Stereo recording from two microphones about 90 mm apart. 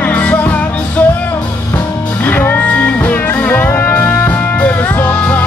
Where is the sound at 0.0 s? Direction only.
15° left (ahead or behind).